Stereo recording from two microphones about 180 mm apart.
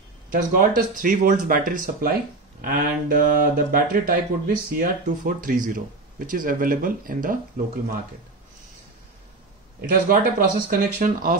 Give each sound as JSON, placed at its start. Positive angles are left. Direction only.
{"t": 0.3, "sound": "speech", "side_deg": -50}
{"t": 9.8, "sound": "speech", "side_deg": -55}